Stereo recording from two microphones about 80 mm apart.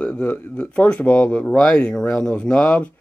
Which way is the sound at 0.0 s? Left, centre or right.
Centre.